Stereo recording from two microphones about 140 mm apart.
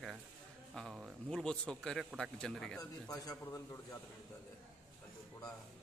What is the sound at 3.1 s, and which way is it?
Speech, 25° left (ahead or behind).